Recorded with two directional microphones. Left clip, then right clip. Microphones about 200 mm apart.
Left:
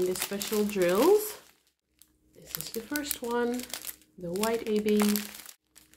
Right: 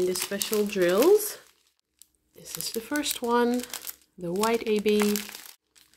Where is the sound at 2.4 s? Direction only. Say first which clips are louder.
Right 5 dB; 45° right (ahead or behind).